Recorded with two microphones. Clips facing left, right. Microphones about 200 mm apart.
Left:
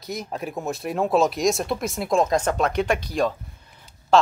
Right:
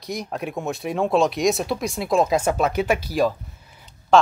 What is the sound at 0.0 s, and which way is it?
Speech, centre (ahead or behind).